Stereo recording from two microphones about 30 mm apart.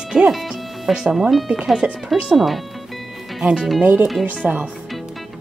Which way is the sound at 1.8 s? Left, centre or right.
Right.